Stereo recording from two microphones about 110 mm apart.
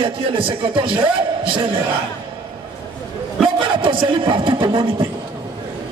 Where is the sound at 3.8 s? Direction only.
50° right (ahead or behind).